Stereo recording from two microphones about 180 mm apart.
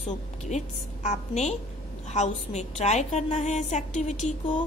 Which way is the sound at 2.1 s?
40° left (ahead or behind).